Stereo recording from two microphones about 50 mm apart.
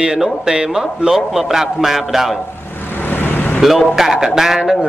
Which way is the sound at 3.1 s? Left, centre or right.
Left.